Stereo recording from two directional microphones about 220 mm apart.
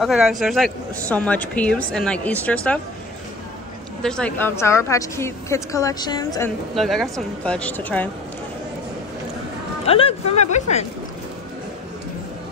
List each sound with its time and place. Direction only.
0.0 s speech: centre (ahead or behind)
4.0 s a woman's voice: 5° left (ahead or behind)
6.7 s speech: centre (ahead or behind)
9.8 s speech: 25° left (ahead or behind)